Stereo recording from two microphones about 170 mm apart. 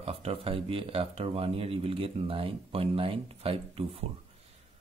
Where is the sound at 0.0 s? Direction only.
35° right (ahead or behind).